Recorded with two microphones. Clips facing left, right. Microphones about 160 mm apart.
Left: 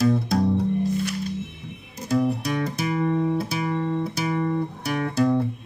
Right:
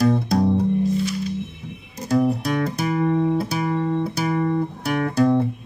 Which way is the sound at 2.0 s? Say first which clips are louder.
Right 3 dB; 65° right (ahead or behind).